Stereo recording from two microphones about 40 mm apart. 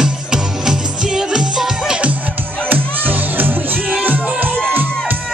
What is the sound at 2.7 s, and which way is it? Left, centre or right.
Music, right.